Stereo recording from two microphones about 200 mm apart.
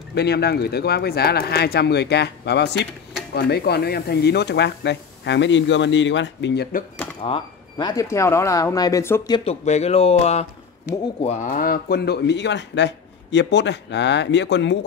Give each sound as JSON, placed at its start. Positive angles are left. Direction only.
{"t": 0.1, "sound": "speech", "side_deg": 55}
{"t": 7.2, "sound": "speech", "side_deg": 25}
{"t": 9.4, "sound": "speech", "side_deg": 30}